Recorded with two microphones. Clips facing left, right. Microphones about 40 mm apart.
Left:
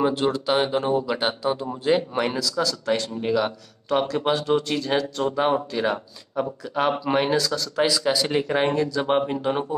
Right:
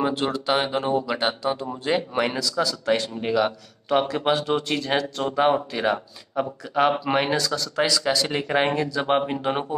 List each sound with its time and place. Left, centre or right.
0.0 s speech: centre
2.8 s speech: centre
8.3 s speech: centre
8.5 s speech: centre